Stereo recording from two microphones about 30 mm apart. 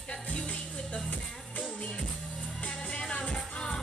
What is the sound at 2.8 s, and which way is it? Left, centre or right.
Music, left.